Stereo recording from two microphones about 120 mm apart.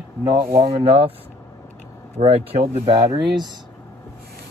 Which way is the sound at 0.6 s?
50° right (ahead or behind).